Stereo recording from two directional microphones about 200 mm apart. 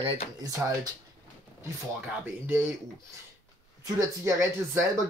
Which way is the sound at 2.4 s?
10° right (ahead or behind).